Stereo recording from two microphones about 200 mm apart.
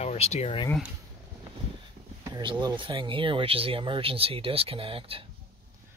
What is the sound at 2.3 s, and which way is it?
Speech, 20° right (ahead or behind).